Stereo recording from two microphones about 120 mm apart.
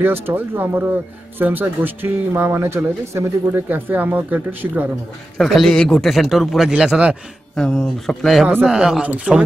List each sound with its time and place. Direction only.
0.0 s speech: 20° right (ahead or behind)
5.4 s a man's voice: centre (ahead or behind)
7.5 s a man's voice: 5° left (ahead or behind)